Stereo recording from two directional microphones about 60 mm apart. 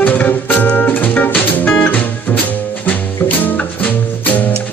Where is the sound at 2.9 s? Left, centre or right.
Left.